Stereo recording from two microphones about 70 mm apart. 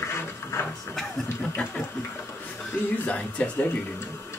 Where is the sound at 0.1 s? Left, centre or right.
Left.